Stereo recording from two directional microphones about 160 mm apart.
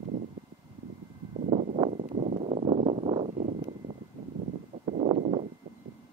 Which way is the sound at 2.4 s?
40° right (ahead or behind).